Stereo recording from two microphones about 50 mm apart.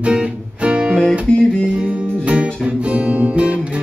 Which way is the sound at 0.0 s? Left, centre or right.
Right.